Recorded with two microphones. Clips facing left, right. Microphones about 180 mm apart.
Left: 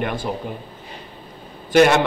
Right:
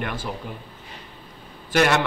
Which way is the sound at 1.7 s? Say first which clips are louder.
Left 6 dB; 20° left (ahead or behind).